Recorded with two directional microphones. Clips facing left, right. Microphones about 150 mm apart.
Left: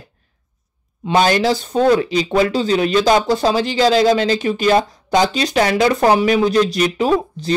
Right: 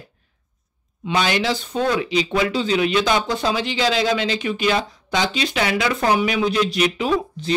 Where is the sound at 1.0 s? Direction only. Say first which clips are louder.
Left 6 dB; 40° left (ahead or behind).